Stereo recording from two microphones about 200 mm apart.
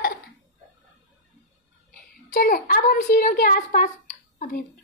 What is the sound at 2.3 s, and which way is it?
A child's voice, 45° left (ahead or behind).